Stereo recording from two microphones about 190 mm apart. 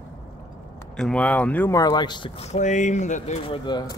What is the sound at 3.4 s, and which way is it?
Speech, 25° left (ahead or behind).